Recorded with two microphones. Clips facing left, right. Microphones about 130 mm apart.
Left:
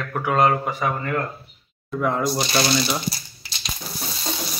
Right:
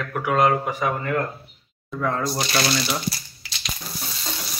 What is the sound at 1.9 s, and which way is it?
Speech, 15° left (ahead or behind).